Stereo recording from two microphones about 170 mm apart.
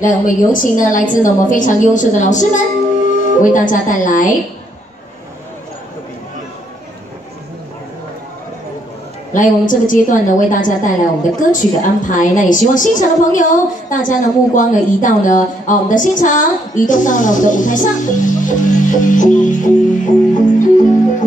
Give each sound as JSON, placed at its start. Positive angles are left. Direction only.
{"t": 0.0, "sound": "a woman's voice", "side_deg": 50}
{"t": 9.3, "sound": "a woman's voice", "side_deg": 50}